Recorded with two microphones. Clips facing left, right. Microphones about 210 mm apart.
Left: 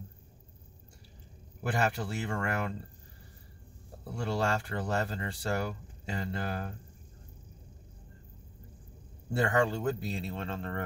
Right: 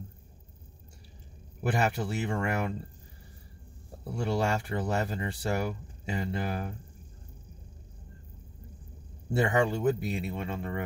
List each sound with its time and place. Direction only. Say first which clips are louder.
1.6 s speech: right 2 dB; 20° right (ahead or behind)
4.1 s speech: right 2 dB; 20° right (ahead or behind)
9.3 s speech: right 2 dB; 20° right (ahead or behind)